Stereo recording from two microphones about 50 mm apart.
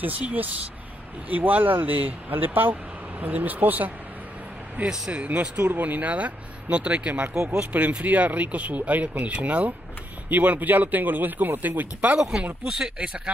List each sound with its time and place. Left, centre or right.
1.3 s speech: right
4.8 s speech: centre
5.1 s speech: right
5.6 s speech: right
12.2 s speech: centre